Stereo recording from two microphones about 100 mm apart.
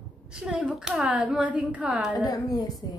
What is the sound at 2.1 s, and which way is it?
Speech, 40° left (ahead or behind).